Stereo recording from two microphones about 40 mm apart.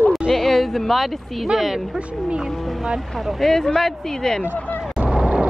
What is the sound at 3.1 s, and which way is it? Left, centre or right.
Speech, centre.